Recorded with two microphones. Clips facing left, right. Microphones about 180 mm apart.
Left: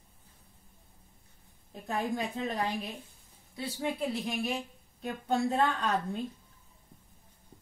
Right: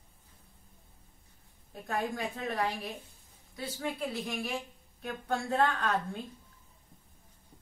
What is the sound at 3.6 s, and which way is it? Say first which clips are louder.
Speech: left 3 dB; 20° left (ahead or behind).